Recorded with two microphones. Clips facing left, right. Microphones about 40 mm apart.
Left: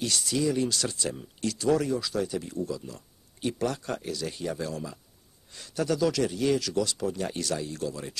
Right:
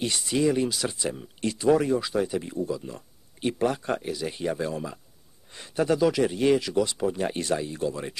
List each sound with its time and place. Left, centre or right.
0.0 s speech: right
0.7 s speech: centre